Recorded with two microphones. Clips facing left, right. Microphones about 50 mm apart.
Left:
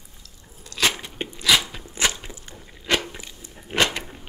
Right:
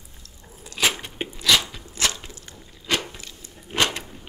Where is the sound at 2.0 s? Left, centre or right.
Left.